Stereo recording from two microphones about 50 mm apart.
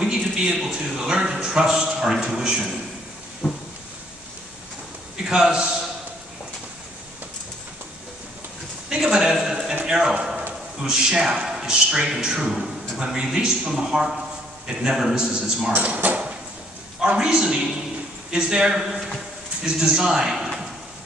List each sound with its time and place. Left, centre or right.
0.0 s a man's voice: centre
3.4 s a sound: centre
5.2 s a man's voice: centre
8.8 s a sound: centre
9.8 s a man's voice: centre
15.7 s speech: right
17.0 s a man's voice: centre
18.8 s a sound: centre
19.6 s a man's voice: centre